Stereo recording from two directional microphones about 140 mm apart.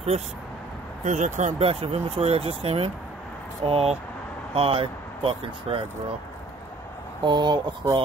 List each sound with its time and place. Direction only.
1.0 s speech: 60° right (ahead or behind); by 6.1 s 40° right (ahead or behind)
7.2 s speech: 30° right (ahead or behind)